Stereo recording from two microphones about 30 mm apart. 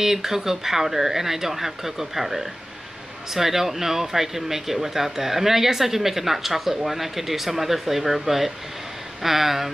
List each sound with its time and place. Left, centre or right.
0.0 s speech: centre